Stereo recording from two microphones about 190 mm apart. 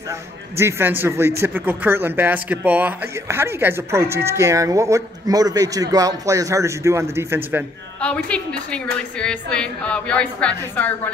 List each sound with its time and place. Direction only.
0.6 s speech: 15° right (ahead or behind)
8.0 s a woman's voice: 5° left (ahead or behind)